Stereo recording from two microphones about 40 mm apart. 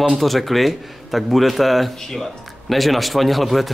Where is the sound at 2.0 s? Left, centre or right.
Centre.